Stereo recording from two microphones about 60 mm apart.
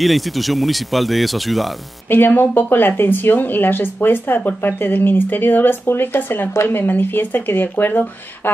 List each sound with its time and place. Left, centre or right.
0.0 s speech: centre
2.0 s speech: left